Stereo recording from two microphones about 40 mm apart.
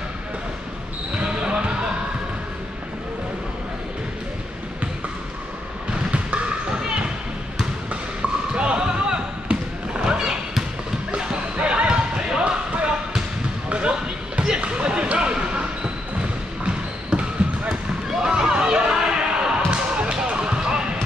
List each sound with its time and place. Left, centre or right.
1.1 s basketball bounce: right
5.9 s basketball bounce: right
6.8 s basketball bounce: centre
8.5 s basketball bounce: right
11.5 s basketball bounce: right